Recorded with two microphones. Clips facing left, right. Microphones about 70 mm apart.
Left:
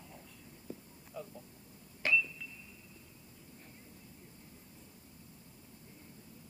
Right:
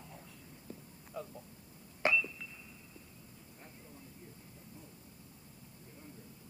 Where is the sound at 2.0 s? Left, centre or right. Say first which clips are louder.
Right 1 dB; right.